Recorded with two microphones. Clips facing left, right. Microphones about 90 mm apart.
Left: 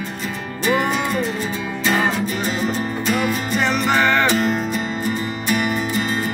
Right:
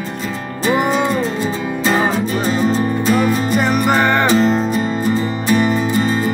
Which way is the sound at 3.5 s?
15° right (ahead or behind).